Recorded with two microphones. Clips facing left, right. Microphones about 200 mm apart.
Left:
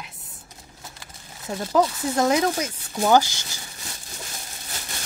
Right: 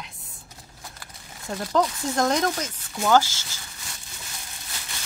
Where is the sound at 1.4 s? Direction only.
5° left (ahead or behind).